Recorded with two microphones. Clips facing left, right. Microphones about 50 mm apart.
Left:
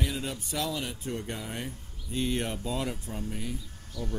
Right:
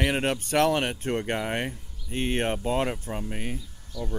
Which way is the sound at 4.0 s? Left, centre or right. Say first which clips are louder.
Right 3 dB; centre.